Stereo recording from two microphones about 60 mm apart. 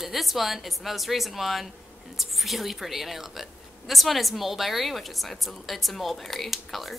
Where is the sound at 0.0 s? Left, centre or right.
Centre.